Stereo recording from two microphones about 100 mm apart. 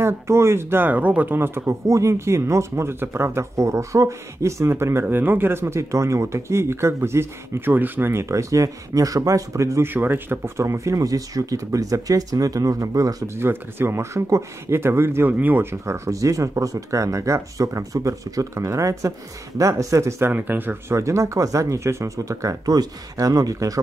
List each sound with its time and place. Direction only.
0.0 s speech: 25° right (ahead or behind)